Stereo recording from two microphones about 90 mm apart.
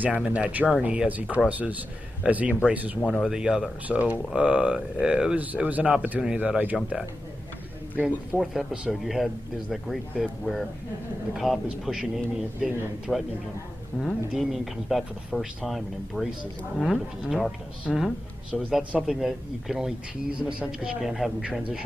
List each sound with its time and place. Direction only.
0.0 s speech: 15° right (ahead or behind)
3.1 s speech: 5° right (ahead or behind)
8.0 s speech: 5° right (ahead or behind)
18.8 s speech: 15° right (ahead or behind)